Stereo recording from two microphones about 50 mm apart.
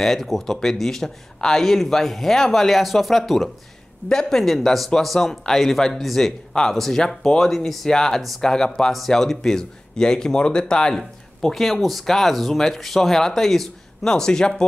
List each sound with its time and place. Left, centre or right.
0.0 s speech: centre
4.1 s speech: centre
6.5 s speech: centre